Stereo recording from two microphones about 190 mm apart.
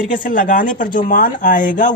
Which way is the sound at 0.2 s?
45° left (ahead or behind).